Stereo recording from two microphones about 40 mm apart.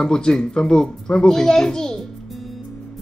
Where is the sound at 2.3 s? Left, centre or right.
Centre.